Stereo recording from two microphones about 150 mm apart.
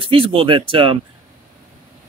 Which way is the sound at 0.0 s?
35° right (ahead or behind).